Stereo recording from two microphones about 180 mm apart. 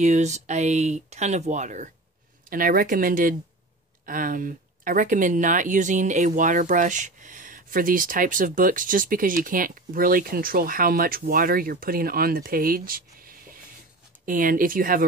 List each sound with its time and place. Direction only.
0.0 s speech: 40° right (ahead or behind)